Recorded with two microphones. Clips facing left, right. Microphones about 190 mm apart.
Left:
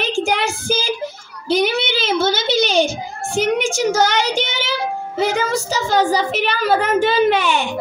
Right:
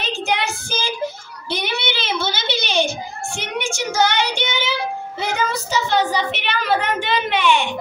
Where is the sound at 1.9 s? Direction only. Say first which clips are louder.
Left 6 dB; 45° left (ahead or behind).